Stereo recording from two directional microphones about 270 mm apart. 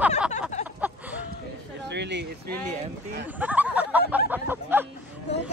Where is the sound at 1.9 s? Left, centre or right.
Right.